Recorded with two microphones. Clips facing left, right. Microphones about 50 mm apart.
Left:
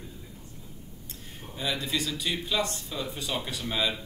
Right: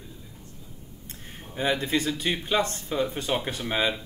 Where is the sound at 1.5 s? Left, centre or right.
Right.